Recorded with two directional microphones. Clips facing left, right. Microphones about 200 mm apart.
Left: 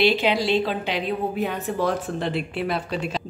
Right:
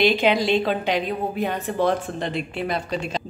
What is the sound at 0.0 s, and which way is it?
Speech, 50° right (ahead or behind).